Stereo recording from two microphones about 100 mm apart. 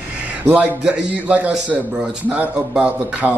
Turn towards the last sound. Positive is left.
turn(degrees=-15)  # may be behind; listen again after turning